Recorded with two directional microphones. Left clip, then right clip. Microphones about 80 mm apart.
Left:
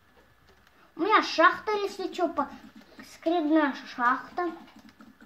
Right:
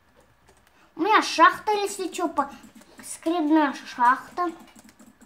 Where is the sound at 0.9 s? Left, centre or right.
Right.